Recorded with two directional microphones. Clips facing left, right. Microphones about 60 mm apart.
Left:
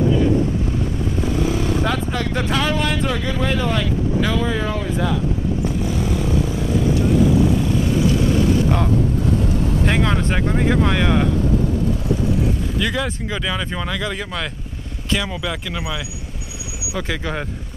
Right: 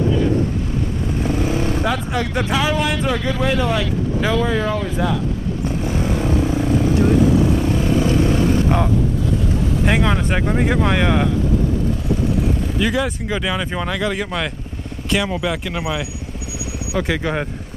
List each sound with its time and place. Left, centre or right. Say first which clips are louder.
1.5 s vehicle: even; right
1.8 s speech: right 1 dB; centre
5.9 s vehicle: right 1 dB; right
9.8 s speech: right 3 dB; centre
12.7 s speech: right 3 dB; centre